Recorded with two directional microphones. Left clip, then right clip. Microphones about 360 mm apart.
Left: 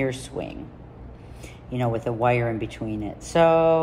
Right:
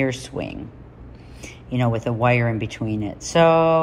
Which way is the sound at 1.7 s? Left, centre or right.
Right.